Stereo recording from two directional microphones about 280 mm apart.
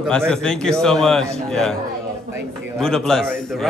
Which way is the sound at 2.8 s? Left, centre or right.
Centre.